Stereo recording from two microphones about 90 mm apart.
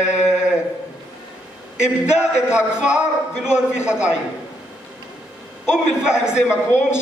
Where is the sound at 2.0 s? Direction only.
10° right (ahead or behind).